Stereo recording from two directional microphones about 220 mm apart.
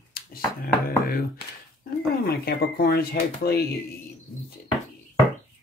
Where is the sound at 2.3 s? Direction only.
45° left (ahead or behind).